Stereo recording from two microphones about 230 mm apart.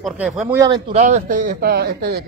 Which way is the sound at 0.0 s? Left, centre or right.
Centre.